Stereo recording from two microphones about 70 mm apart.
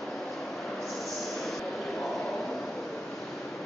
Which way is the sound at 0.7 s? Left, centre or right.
Centre.